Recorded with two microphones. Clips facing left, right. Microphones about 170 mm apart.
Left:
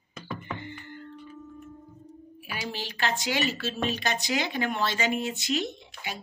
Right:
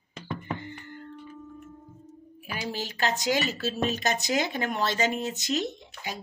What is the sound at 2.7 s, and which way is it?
Speech, 40° right (ahead or behind).